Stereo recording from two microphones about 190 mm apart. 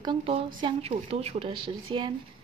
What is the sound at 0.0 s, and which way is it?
A woman's voice, 25° right (ahead or behind).